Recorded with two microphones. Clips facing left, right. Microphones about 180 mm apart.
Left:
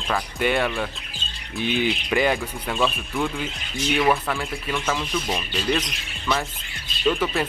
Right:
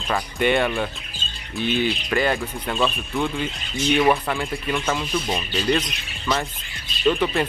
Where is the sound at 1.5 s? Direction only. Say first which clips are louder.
Right 1 dB; 15° left (ahead or behind).